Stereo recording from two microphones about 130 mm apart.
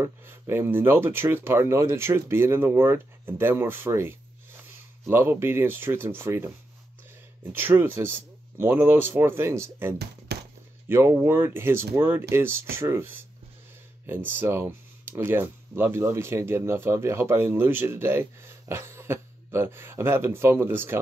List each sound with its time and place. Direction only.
0.0 s speech: 20° right (ahead or behind)